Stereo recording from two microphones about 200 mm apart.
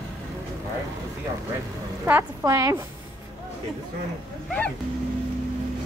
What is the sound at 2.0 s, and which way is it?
Speech, 15° right (ahead or behind).